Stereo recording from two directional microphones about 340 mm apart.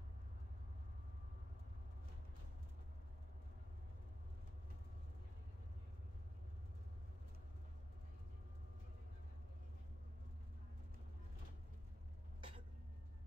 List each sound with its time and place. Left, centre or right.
12.4 s cough: centre